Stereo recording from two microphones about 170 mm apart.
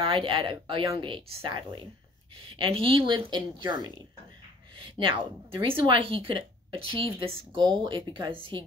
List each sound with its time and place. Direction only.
0.0 s a woman's voice: 30° right (ahead or behind)